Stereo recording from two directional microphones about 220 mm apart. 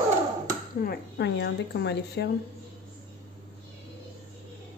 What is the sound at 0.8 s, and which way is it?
Speech, 50° left (ahead or behind).